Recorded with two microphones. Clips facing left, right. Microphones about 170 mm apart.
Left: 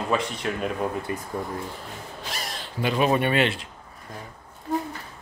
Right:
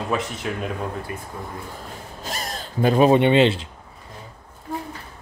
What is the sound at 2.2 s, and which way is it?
Gasp, 45° right (ahead or behind).